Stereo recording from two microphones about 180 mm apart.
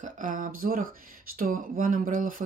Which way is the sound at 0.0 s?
45° right (ahead or behind).